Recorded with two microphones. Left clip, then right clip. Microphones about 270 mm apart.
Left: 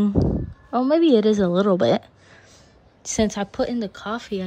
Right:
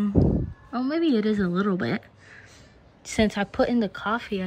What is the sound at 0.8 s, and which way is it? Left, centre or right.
A woman's voice, centre.